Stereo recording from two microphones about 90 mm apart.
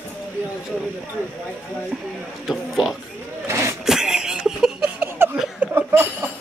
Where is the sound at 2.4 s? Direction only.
Centre (ahead or behind).